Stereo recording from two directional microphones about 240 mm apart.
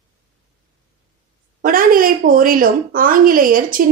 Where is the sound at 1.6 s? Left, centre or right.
Right.